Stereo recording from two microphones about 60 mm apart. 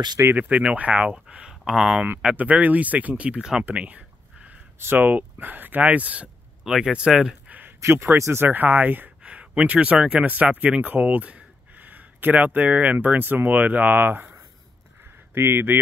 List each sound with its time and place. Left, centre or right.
0.3 s speech: right; by 2.0 s centre
2.3 s speech: right
3.7 s a sound: right
4.7 s speech: right
6.6 s speech: centre
7.4 s a sound: right
7.8 s a man's voice: right
15.3 s speech: right